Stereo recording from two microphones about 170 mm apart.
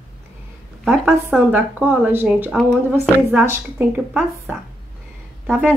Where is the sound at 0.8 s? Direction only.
5° right (ahead or behind).